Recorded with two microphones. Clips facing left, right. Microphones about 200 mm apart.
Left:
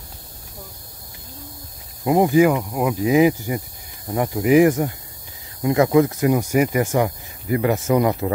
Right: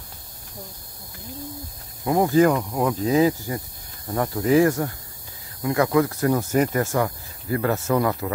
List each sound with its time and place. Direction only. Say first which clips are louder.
2.0 s speech: left 2 dB; 20° left (ahead or behind)